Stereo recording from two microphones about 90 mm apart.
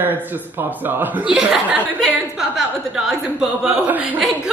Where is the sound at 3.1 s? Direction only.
5° right (ahead or behind).